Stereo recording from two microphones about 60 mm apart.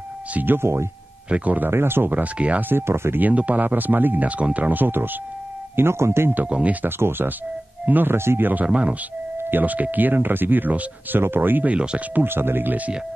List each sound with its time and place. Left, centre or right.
0.3 s speech: right
0.6 s speech: right
1.3 s speech: right
1.7 s speech: right
2.2 s speech: right
2.7 s speech: right
3.2 s speech: right
5.8 s speech: right
6.3 s speech: right
7.0 s speech: right
8.6 s speech: right
9.4 s speech: right
11.7 s speech: centre
12.1 s speech: right